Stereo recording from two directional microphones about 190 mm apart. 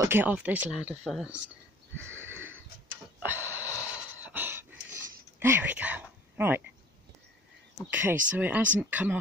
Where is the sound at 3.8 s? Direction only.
10° right (ahead or behind).